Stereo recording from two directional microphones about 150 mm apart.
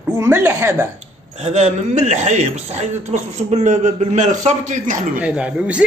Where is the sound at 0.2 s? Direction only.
15° right (ahead or behind).